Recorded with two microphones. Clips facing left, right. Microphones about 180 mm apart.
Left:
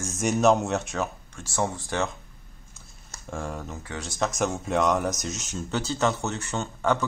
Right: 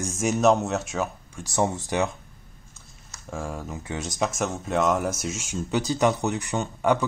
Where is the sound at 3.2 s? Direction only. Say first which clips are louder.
Right 1 dB; 5° right (ahead or behind).